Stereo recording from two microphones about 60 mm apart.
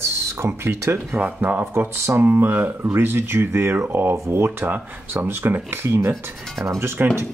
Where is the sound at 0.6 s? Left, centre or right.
Right.